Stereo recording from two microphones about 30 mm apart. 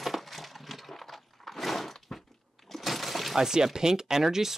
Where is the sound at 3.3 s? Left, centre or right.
Centre.